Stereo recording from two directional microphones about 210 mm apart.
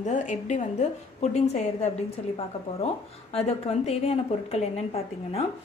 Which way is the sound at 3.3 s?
30° left (ahead or behind).